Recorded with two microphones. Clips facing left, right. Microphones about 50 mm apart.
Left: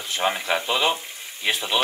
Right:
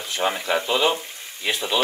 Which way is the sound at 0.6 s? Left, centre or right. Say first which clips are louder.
Right 2 dB; left.